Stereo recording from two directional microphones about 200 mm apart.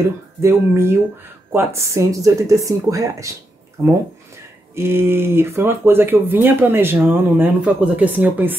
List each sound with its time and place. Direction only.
0.4 s speech: 15° right (ahead or behind)